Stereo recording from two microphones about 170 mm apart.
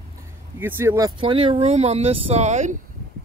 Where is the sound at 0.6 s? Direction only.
15° right (ahead or behind).